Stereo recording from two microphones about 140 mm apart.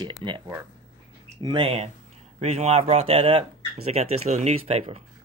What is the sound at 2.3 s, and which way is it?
Speech, 50° right (ahead or behind).